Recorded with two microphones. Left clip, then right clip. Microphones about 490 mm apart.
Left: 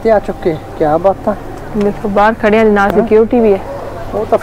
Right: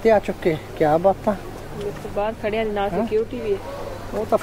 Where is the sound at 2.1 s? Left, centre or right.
Left.